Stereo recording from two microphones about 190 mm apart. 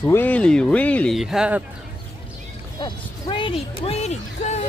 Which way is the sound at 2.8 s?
25° left (ahead or behind).